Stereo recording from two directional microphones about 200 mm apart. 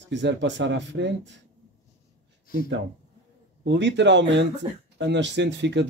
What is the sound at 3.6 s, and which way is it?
Speech, 60° right (ahead or behind).